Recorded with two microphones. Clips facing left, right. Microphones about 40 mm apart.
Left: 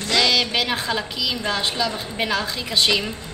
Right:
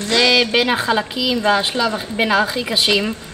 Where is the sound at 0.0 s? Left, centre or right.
Right.